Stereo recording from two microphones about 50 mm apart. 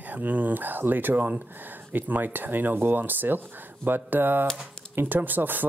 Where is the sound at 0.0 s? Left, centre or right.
Right.